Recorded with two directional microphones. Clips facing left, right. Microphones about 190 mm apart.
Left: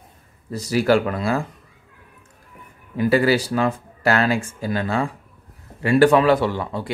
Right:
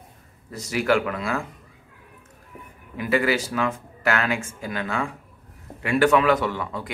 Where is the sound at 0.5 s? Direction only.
35° left (ahead or behind).